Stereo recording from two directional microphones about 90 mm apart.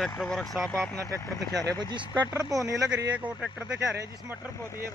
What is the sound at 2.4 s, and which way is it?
Speech, 40° right (ahead or behind).